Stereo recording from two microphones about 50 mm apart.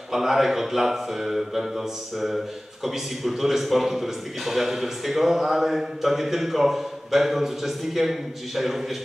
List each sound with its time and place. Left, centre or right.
0.1 s speech: centre